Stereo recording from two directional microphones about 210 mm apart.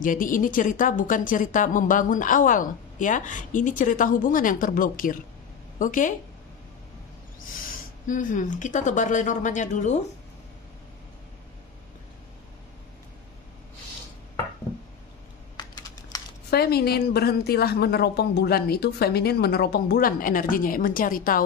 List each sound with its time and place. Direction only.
0.0 s a woman's voice: 40° left (ahead or behind)
8.1 s a woman's voice: 40° left (ahead or behind)
15.5 s computer keyboard: 20° left (ahead or behind)
16.4 s a woman's voice: 50° left (ahead or behind)